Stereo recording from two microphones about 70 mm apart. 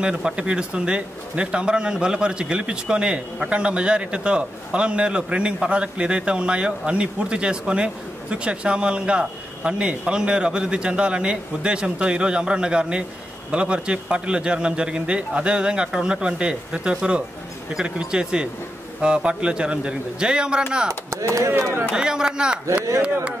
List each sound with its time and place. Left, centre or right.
0.0 s speech: centre
21.9 s speech: centre